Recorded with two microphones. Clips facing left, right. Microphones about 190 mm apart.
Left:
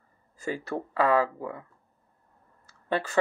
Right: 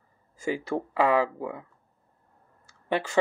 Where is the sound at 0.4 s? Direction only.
10° right (ahead or behind).